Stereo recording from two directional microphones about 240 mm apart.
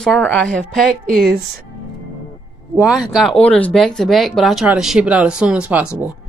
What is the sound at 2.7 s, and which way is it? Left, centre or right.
Speech, centre.